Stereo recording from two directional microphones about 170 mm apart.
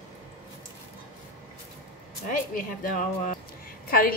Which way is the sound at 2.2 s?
50° left (ahead or behind).